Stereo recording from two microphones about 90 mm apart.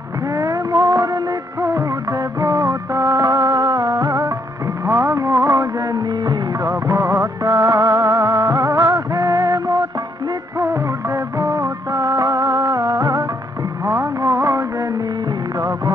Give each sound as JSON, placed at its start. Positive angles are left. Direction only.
{"t": 0.4, "sound": "music of bollywood", "side_deg": -40}
{"t": 3.3, "sound": "music", "side_deg": -45}
{"t": 10.6, "sound": "music of bollywood", "side_deg": -35}
{"t": 13.8, "sound": "music", "side_deg": -35}